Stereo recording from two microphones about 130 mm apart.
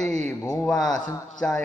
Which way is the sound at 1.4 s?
10° left (ahead or behind).